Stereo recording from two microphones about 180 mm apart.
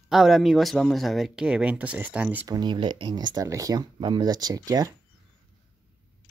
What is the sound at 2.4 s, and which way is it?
Speech, 25° right (ahead or behind).